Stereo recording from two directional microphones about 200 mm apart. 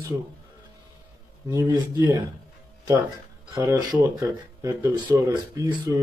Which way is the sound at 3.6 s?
15° right (ahead or behind).